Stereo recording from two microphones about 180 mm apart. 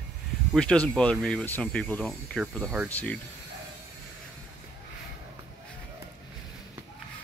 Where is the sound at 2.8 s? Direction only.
10° left (ahead or behind).